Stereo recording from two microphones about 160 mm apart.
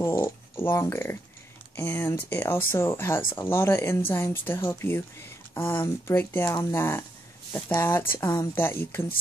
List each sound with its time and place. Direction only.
0.0 s speech: 15° left (ahead or behind)